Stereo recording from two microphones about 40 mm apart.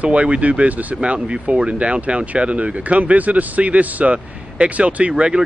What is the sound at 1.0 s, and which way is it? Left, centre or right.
Speech, right.